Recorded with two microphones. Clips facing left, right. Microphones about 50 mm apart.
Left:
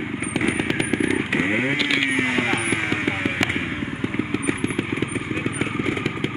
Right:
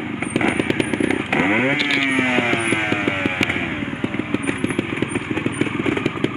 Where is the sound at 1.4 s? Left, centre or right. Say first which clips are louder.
Right 7 dB; right.